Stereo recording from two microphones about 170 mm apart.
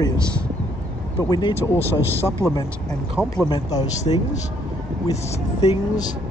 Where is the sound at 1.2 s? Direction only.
25° left (ahead or behind).